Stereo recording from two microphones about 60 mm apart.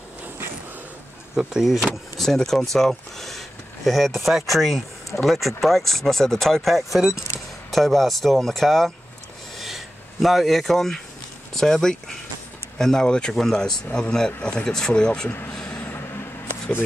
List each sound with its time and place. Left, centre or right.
1.3 s speech: centre
2.1 s speech: centre
9.6 s a sound: centre
11.5 s speech: centre
15.2 s speech: left